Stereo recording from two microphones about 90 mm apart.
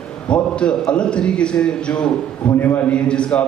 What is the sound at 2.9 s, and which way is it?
Speech, 10° left (ahead or behind).